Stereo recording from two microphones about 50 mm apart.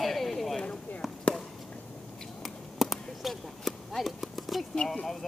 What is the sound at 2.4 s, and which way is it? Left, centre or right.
Basketball bounce, centre.